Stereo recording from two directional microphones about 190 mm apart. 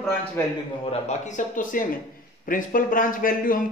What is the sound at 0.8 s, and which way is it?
Speech, 35° left (ahead or behind).